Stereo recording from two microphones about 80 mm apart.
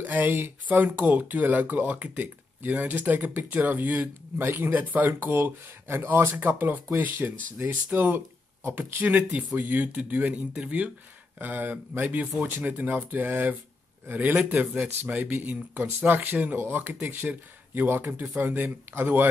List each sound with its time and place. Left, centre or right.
0.0 s speech: right